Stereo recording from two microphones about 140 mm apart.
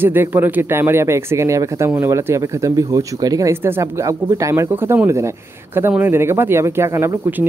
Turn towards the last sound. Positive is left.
turn(degrees=-15)  # may be behind; listen again after turning